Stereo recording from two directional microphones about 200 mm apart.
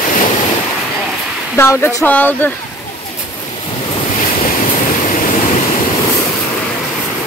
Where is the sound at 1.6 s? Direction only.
15° left (ahead or behind).